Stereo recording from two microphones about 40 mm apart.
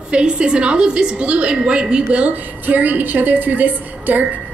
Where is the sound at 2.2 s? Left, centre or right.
Right.